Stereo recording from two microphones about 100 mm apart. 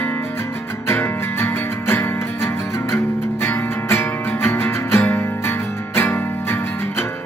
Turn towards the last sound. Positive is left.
turn(degrees=25)  # may be behind; listen again after turning